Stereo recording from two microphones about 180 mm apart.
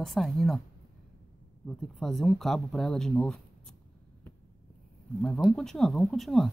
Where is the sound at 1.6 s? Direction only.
Centre (ahead or behind).